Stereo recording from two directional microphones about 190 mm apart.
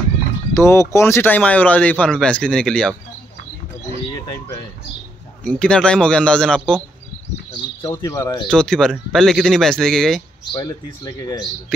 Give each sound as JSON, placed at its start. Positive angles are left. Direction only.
{"t": 0.6, "sound": "speech", "side_deg": 15}
{"t": 5.4, "sound": "speech", "side_deg": 5}
{"t": 7.5, "sound": "speech", "side_deg": 15}
{"t": 8.5, "sound": "speech", "side_deg": 5}
{"t": 10.5, "sound": "speech", "side_deg": 20}